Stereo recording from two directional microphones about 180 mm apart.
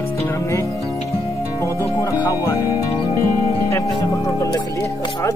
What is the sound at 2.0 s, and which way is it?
Speech, 20° left (ahead or behind).